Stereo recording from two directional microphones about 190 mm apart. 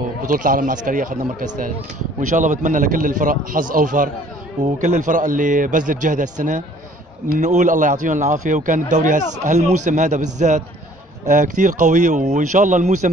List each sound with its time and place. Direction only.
0.3 s a man's voice: 45° right (ahead or behind)